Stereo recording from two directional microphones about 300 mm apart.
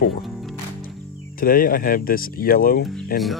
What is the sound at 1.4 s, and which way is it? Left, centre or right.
Speech, left.